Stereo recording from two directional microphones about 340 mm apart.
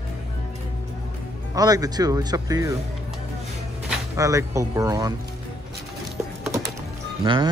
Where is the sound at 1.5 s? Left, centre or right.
Centre.